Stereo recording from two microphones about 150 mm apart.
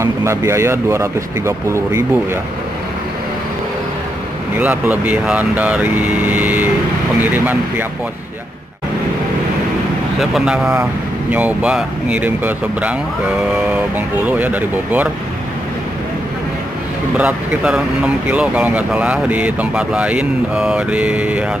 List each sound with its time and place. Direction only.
0.0 s speech: 20° right (ahead or behind)
4.6 s speech: 10° right (ahead or behind)
10.3 s speech: 5° right (ahead or behind)
17.2 s speech: 10° right (ahead or behind)